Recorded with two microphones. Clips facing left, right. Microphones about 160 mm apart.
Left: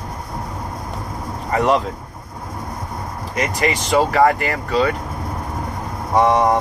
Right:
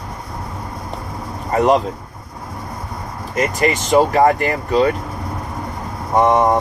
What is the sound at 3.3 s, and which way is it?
Speech, 45° right (ahead or behind).